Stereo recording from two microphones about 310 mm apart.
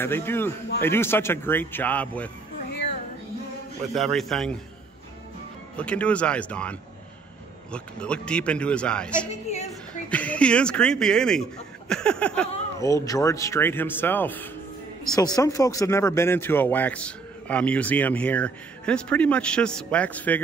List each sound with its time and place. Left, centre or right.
0.0 s speech: centre
3.9 s speech: centre
5.8 s speech: centre